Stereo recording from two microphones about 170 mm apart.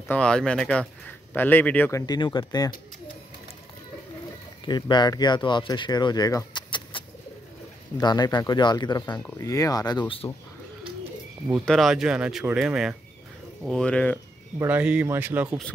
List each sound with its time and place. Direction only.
0.1 s speech: 5° left (ahead or behind); by 2.7 s 25° left (ahead or behind)
4.6 s speech: 25° left (ahead or behind)
11.6 s speech: centre (ahead or behind)
14.6 s speech: 10° right (ahead or behind)